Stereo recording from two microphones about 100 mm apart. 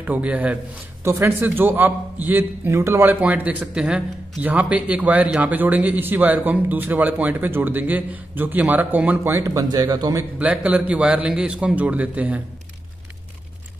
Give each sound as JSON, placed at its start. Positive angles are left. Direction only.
{"t": 0.0, "sound": "a man's voice", "side_deg": -15}
{"t": 1.0, "sound": "a man's voice", "side_deg": -25}
{"t": 9.4, "sound": "speech", "side_deg": -35}
{"t": 10.4, "sound": "a man's voice", "side_deg": -15}